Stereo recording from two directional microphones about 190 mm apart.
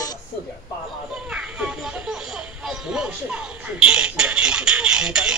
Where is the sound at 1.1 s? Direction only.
5° right (ahead or behind).